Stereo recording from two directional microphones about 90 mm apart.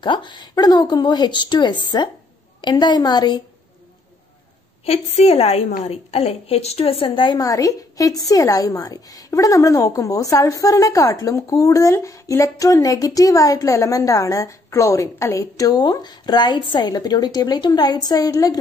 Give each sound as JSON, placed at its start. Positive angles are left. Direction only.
{"t": 0.0, "sound": "a woman's voice", "side_deg": 60}
{"t": 6.1, "sound": "a woman's voice", "side_deg": 90}
{"t": 7.3, "sound": "speech", "side_deg": 40}